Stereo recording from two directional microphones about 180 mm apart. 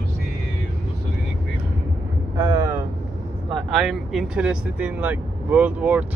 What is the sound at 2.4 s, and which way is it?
Vehicle, 20° right (ahead or behind).